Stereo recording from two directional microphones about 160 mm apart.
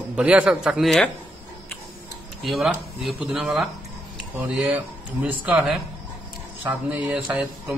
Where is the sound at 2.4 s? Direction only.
Centre (ahead or behind).